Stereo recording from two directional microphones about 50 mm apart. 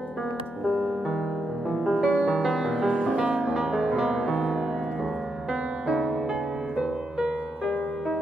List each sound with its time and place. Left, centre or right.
0.7 s music: centre
5.5 s music: centre